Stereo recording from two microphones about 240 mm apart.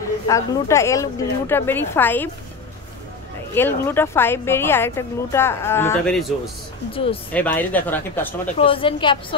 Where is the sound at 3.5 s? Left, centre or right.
Centre.